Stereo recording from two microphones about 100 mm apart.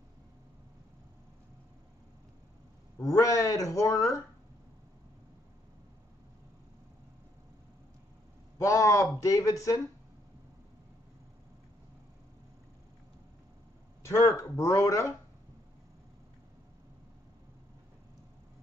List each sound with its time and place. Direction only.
3.0 s speech: 35° left (ahead or behind)
8.5 s speech: 35° left (ahead or behind)
14.0 s speech: 35° left (ahead or behind)